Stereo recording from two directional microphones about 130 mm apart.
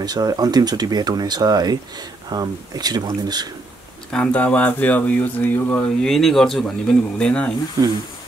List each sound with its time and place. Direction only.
0.0 s speech: 30° right (ahead or behind)
4.1 s speech: 10° left (ahead or behind)